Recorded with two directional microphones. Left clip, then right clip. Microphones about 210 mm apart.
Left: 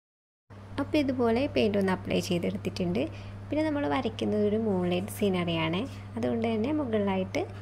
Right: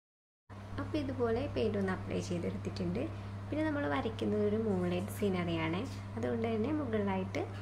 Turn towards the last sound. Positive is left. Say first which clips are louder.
# left 7 dB
turn(degrees=25)  # may be behind; listen again after turning